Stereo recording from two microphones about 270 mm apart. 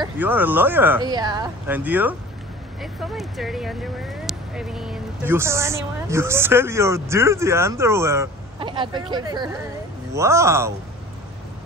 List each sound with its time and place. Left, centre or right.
0.0 s speech: centre